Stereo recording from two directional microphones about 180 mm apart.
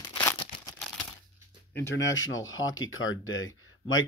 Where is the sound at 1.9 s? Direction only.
90° left.